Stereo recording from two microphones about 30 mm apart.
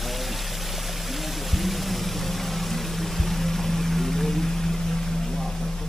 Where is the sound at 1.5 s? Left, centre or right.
Centre.